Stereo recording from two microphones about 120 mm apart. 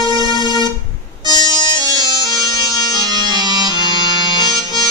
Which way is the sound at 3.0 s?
35° right (ahead or behind).